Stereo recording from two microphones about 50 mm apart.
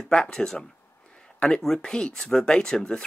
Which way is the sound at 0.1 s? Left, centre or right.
Centre.